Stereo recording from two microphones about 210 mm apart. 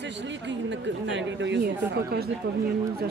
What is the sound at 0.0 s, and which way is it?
Speech, 60° right (ahead or behind).